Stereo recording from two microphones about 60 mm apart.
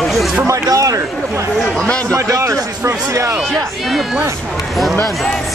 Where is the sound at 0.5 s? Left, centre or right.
Right.